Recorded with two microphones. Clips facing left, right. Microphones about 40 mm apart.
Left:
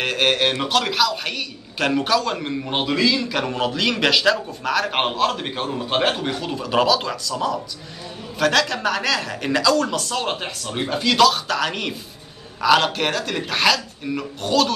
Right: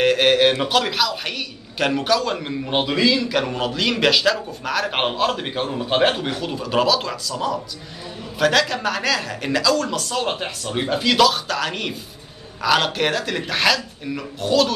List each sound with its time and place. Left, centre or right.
0.0 s a man's voice: centre